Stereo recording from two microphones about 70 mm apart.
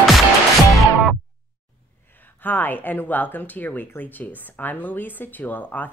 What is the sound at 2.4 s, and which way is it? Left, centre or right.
Speech, left.